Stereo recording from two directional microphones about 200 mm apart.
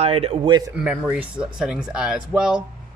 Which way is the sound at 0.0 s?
30° right (ahead or behind).